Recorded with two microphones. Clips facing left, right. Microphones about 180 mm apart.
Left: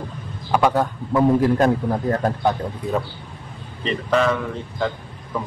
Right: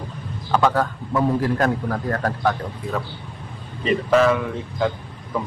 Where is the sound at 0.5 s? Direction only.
15° left (ahead or behind).